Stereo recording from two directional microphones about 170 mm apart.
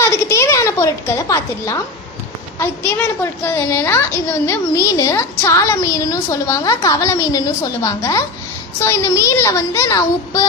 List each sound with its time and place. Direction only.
0.0 s a woman's voice: 15° left (ahead or behind)